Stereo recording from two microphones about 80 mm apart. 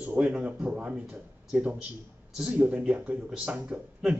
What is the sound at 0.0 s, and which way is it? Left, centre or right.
Speech, centre.